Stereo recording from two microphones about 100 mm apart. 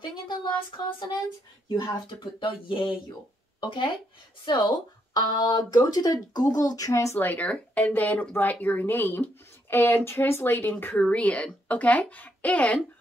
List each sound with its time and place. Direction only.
0.0 s speech: 50° left (ahead or behind); by 7.2 s 30° left (ahead or behind)
7.2 s speech: 15° left (ahead or behind)